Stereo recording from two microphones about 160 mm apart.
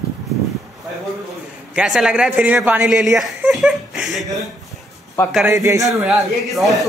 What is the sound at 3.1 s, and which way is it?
Chuckle, centre (ahead or behind).